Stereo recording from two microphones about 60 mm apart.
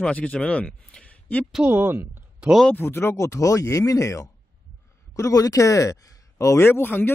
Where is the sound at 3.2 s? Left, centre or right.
Left.